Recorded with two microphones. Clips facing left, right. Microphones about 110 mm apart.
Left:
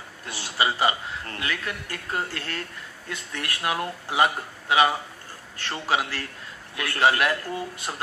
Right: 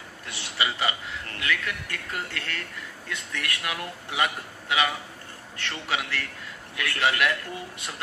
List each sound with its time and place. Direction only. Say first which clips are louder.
0.3 s a man's voice: left 4 dB; 30° left (ahead or behind)